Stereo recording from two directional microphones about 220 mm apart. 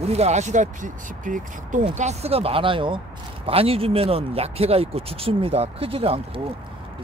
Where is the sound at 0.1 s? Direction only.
30° right (ahead or behind).